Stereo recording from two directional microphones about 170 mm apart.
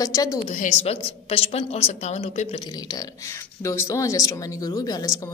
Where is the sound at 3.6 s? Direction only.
20° left (ahead or behind).